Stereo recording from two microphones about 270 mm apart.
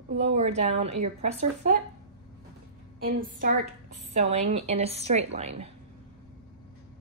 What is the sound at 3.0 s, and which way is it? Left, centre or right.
A woman's voice, right.